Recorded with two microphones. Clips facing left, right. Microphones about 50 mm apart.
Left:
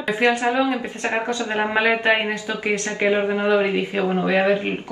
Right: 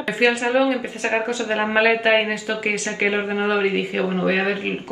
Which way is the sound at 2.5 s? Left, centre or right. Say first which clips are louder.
Even; right.